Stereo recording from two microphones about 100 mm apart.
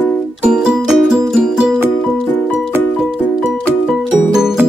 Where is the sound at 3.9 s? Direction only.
Centre (ahead or behind).